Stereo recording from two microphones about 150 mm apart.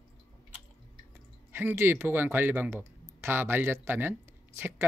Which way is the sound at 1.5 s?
15° right (ahead or behind).